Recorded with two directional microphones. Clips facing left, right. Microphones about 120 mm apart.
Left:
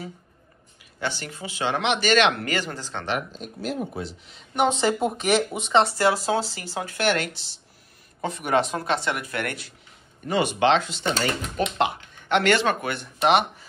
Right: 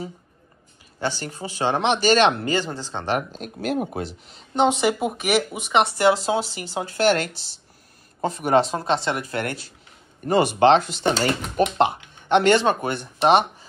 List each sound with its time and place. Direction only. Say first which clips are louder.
0.9 s speech: right 3 dB; 35° right (ahead or behind)
3.3 s speech: right 4 dB; 60° right (ahead or behind)
4.6 s speech: right 2 dB; 15° right (ahead or behind)
5.8 s speech: right 2 dB; 20° right (ahead or behind)
10.2 s speech: right 5 dB; 40° right (ahead or behind)
11.1 s speech: right 3 dB; 35° right (ahead or behind)